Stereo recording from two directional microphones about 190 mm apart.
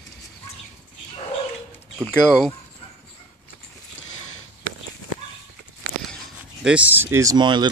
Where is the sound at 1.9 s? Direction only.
Centre (ahead or behind).